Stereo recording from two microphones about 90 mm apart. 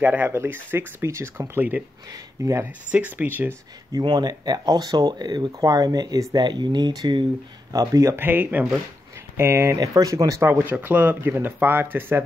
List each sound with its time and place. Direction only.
0.0 s speech: 20° right (ahead or behind)
2.0 s speech: 40° right (ahead or behind)
2.6 s speech: 20° right (ahead or behind)
4.0 s speech: 50° right (ahead or behind)
7.7 s speech: 40° right (ahead or behind)
8.2 s speech: 20° right (ahead or behind); by 10.4 s 35° right (ahead or behind)
10.4 s speech: 25° right (ahead or behind)